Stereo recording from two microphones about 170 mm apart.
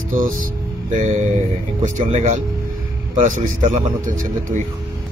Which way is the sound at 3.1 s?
50° right (ahead or behind).